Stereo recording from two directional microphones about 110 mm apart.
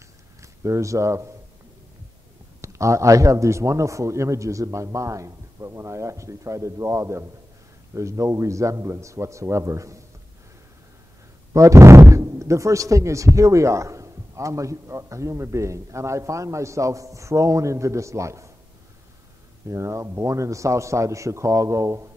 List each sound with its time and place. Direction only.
0.4 s speech: 25° right (ahead or behind)
2.6 s speech: 30° right (ahead or behind)
11.5 s speech: 30° right (ahead or behind)
19.7 s speech: 30° right (ahead or behind)